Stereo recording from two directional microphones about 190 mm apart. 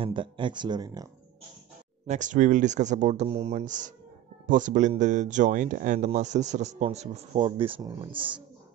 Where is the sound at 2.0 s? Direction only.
40° right (ahead or behind).